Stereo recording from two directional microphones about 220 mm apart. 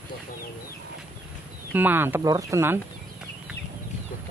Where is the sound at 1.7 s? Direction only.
10° right (ahead or behind).